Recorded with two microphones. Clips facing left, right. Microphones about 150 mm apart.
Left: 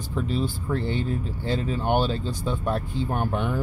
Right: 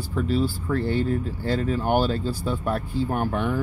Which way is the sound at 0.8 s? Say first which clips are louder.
Right 4 dB; 45° right (ahead or behind).